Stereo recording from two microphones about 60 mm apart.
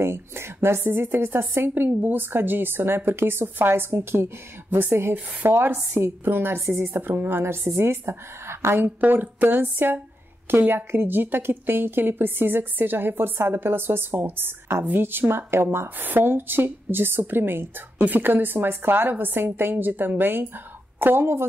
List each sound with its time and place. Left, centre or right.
0.0 s a woman's voice: right